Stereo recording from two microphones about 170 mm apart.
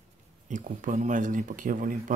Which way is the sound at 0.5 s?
50° right (ahead or behind).